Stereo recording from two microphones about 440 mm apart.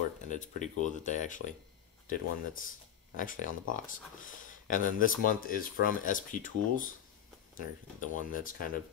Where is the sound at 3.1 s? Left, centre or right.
Centre.